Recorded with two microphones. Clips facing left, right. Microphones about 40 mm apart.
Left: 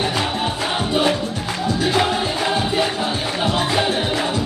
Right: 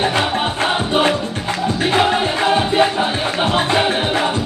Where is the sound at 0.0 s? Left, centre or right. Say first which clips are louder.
Right 4 dB; right.